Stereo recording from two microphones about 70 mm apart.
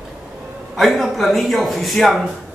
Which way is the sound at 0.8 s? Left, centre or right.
Centre.